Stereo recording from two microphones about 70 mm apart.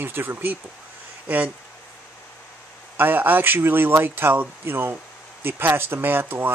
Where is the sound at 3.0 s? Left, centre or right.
Right.